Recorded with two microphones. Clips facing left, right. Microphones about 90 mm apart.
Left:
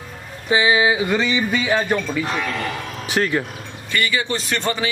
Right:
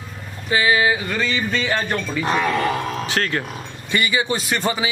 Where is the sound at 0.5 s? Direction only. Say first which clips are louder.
Left 1 dB; 20° left (ahead or behind).